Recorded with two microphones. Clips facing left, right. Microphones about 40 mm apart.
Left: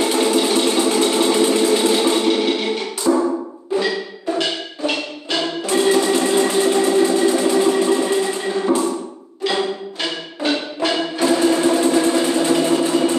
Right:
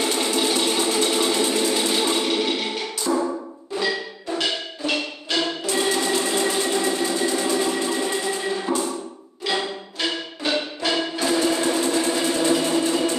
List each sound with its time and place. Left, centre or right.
0.0 s a sound: centre
3.1 s wood block: left
3.7 s wood block: centre
9.4 s music: centre